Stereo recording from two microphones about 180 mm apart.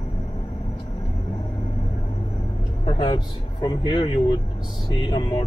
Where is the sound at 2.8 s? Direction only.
25° left (ahead or behind).